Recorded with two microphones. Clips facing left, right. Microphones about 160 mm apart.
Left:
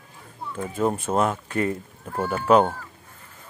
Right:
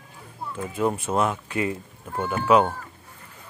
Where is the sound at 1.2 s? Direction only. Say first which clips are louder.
Left 2 dB; 45° left (ahead or behind).